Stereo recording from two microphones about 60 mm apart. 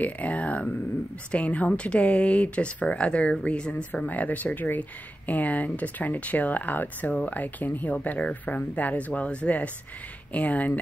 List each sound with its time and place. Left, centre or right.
0.0 s speech: left